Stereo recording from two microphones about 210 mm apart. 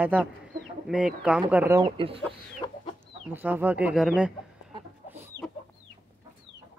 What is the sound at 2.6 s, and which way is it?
Chicken, 20° left (ahead or behind).